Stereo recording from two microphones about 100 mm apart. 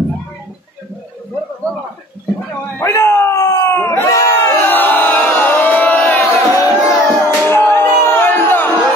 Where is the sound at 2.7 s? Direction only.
25° left (ahead or behind).